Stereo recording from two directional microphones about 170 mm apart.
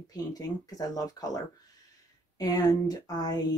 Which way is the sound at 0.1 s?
20° left (ahead or behind).